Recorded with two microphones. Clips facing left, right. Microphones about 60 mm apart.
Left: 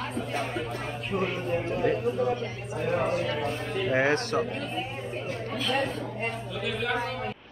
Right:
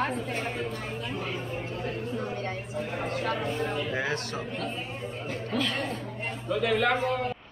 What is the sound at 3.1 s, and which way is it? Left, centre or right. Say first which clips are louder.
Speech: left 2 dB; right.